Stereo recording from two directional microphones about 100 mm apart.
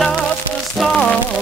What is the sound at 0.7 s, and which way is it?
Music, 10° left (ahead or behind).